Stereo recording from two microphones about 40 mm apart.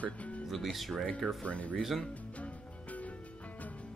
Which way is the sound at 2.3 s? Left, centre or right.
Left.